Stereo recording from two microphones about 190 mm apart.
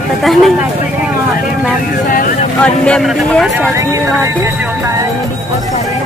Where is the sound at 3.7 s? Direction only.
15° right (ahead or behind).